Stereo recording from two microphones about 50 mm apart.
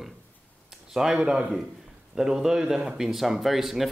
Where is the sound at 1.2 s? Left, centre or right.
Right.